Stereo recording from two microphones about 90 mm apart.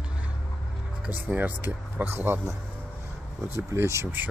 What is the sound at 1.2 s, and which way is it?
Speech, 20° right (ahead or behind).